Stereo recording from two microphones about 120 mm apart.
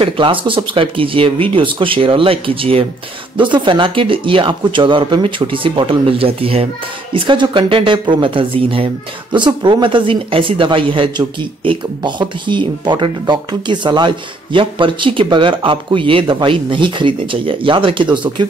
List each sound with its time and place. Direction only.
0.0 s speech: 45° right (ahead or behind)